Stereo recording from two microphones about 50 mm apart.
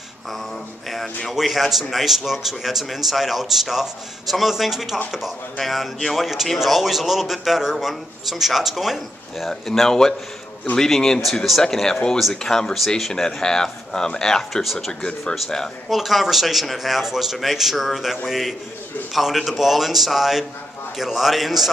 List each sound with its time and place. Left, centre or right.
0.8 s a man's voice: centre
9.5 s a man's voice: centre
14.6 s a man's voice: centre
14.9 s speech: centre
15.9 s a man's voice: centre